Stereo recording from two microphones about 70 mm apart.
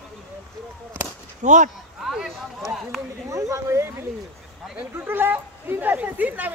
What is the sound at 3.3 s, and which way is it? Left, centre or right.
Speech, right.